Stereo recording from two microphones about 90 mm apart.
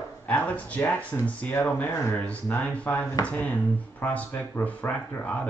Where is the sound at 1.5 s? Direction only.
25° left (ahead or behind).